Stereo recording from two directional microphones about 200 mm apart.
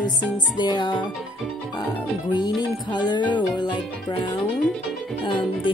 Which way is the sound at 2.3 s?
20° left (ahead or behind).